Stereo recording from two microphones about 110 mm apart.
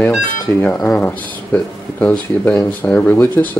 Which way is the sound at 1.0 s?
15° left (ahead or behind).